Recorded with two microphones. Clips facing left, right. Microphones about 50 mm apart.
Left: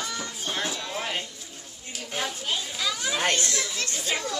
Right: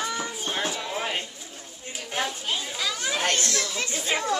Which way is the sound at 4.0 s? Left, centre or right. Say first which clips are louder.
Right 5 dB; right.